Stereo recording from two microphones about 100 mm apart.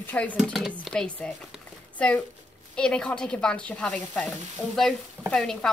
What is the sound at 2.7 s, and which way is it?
A woman's voice, 10° left (ahead or behind).